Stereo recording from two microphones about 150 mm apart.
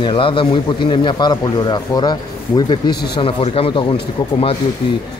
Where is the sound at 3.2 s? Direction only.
40° left (ahead or behind).